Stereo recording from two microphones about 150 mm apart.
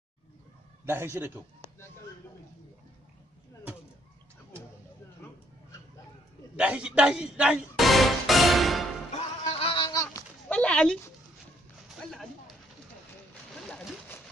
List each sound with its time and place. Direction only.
0.8 s a man's voice: 15° right (ahead or behind)
6.5 s music: 10° right (ahead or behind)
9.1 s music: 45° left (ahead or behind)
10.5 s a sound: 5° left (ahead or behind)
12.0 s a sound: centre (ahead or behind)
13.7 s splash: 5° left (ahead or behind)